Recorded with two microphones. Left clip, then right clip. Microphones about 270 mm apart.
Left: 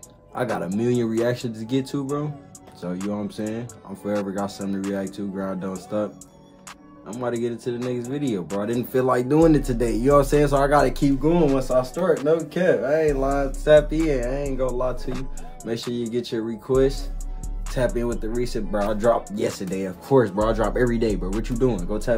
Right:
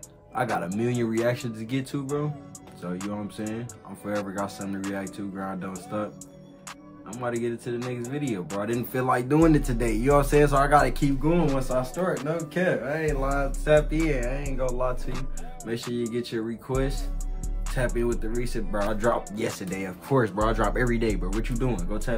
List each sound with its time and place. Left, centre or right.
0.3 s speech: centre
7.1 s speech: centre